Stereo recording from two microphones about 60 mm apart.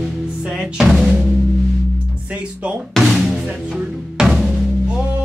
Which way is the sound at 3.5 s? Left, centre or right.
Centre.